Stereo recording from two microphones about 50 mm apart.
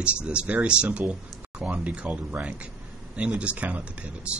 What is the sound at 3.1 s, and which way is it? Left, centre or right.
Speech, right.